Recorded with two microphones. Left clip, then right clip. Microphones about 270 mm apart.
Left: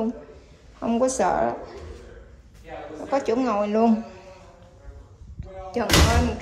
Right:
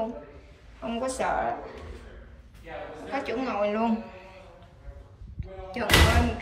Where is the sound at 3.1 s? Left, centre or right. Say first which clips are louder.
Left 8 dB; centre.